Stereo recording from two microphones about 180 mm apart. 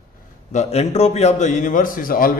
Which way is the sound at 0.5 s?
35° left (ahead or behind).